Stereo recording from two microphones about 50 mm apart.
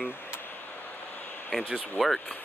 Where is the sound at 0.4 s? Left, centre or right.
Left.